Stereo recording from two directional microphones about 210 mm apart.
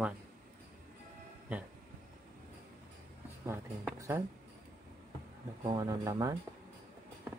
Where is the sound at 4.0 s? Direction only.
10° right (ahead or behind).